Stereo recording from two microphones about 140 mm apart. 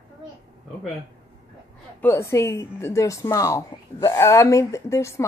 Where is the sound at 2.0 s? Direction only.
15° left (ahead or behind).